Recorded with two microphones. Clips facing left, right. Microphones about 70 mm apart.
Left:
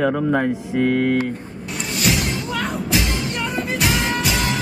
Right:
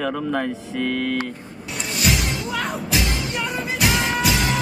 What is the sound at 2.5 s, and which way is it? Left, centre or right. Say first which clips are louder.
Music: left 2 dB; centre.